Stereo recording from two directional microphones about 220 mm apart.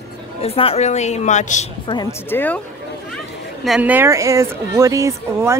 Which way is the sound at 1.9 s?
10° left (ahead or behind).